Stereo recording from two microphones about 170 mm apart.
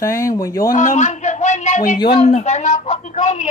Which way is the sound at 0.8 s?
45° left (ahead or behind).